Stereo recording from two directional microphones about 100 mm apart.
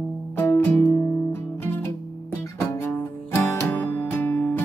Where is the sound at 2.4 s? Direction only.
30° left (ahead or behind).